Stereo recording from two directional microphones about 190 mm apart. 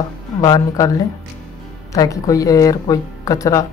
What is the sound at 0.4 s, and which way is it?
Speech, 20° left (ahead or behind).